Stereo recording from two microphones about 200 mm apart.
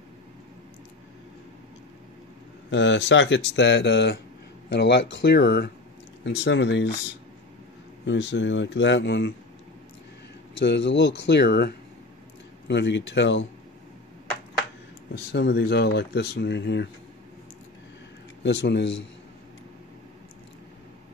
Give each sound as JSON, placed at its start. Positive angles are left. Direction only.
{"t": 2.7, "sound": "speech", "side_deg": 65}
{"t": 8.0, "sound": "speech", "side_deg": 65}
{"t": 10.6, "sound": "speech", "side_deg": 60}
{"t": 15.1, "sound": "speech", "side_deg": 60}
{"t": 18.4, "sound": "speech", "side_deg": 60}